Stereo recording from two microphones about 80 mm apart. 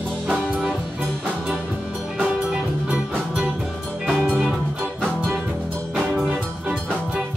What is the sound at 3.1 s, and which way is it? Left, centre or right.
Music, centre.